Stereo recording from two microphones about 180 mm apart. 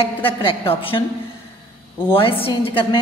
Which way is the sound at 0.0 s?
30° left (ahead or behind).